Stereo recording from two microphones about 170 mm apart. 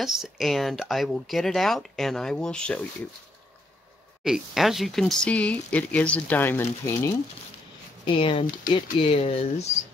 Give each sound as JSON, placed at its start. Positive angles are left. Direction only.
{"t": 0.0, "sound": "speech", "side_deg": 0}
{"t": 4.2, "sound": "speech", "side_deg": 0}
{"t": 8.0, "sound": "speech", "side_deg": 30}